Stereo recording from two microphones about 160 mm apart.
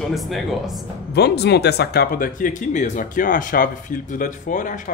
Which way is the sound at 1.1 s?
90° left.